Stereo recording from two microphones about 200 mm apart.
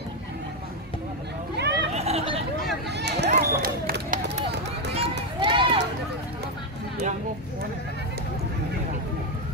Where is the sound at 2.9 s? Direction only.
55° right (ahead or behind).